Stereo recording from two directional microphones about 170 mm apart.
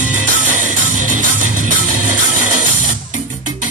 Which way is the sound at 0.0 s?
50° right (ahead or behind).